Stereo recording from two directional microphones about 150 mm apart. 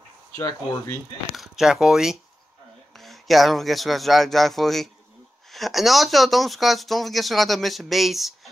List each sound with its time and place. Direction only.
0.4 s speech: 20° left (ahead or behind)
1.3 s speech: centre (ahead or behind)